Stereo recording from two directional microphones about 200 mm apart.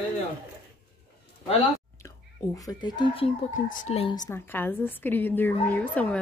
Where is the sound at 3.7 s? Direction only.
40° left (ahead or behind).